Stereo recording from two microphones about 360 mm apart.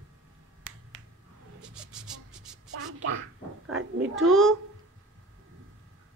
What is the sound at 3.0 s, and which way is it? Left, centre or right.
Quack, right.